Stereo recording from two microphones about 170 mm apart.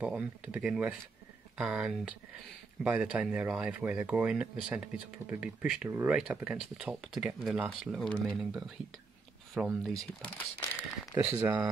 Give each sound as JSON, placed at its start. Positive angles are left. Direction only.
{"t": 0.0, "sound": "speech", "side_deg": -5}
{"t": 11.3, "sound": "speech", "side_deg": -15}